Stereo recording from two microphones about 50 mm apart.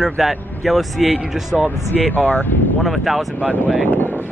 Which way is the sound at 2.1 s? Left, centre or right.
Left.